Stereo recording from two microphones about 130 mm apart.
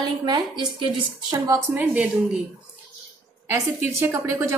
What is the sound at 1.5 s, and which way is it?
Speech, 15° right (ahead or behind).